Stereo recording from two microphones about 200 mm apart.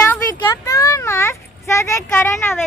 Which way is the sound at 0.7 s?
15° left (ahead or behind).